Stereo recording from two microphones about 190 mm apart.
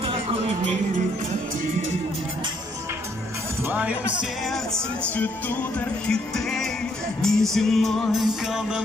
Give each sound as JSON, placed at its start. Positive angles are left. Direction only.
{"t": 0.0, "sound": "music", "side_deg": -30}
{"t": 3.6, "sound": "speech", "side_deg": -5}
{"t": 5.0, "sound": "music", "side_deg": 10}